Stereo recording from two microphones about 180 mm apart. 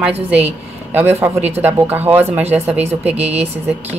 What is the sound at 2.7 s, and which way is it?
Speech, 35° right (ahead or behind).